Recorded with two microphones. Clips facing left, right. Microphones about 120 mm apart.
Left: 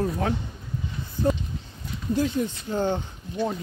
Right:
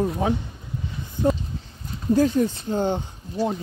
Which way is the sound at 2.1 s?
45° right (ahead or behind).